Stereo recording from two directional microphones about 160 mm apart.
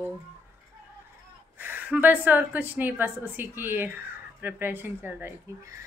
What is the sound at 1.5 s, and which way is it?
Mantra, 10° right (ahead or behind).